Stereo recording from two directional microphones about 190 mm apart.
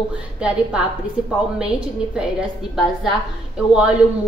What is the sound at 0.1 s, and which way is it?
A woman's voice, 5° right (ahead or behind).